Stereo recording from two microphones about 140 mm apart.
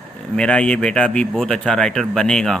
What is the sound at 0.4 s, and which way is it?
Speech, 5° left (ahead or behind).